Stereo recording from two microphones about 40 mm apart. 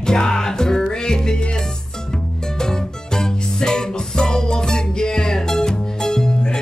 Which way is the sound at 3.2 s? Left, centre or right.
Centre.